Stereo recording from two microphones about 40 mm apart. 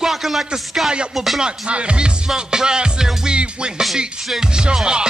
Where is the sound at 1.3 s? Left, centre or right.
Right.